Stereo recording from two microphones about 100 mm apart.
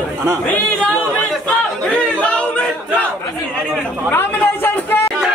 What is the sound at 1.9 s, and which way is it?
Chatter, 10° left (ahead or behind).